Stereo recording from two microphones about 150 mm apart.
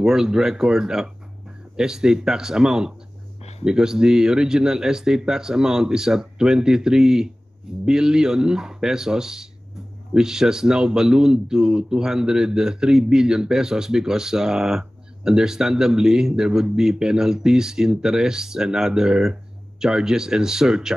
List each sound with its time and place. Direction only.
0.0 s speech: 5° right (ahead or behind)